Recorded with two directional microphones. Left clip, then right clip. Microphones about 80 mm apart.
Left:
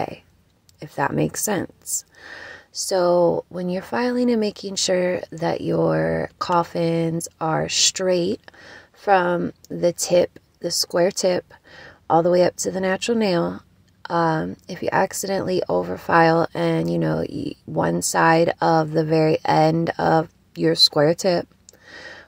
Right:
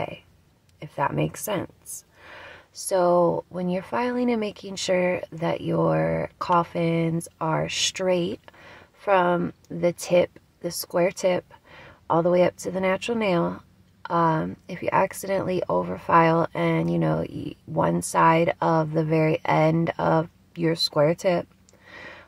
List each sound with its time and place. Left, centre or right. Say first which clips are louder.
0.7 s a woman's voice: left 3 dB; left
2.8 s speech: left 2 dB; left
8.1 s a woman's voice: left 3 dB; left